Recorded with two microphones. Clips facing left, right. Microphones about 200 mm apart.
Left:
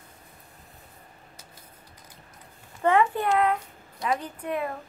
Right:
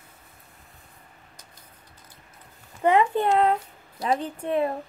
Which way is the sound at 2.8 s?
20° right (ahead or behind).